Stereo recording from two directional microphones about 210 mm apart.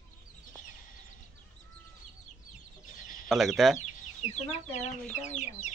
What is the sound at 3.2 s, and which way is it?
Speech, centre (ahead or behind).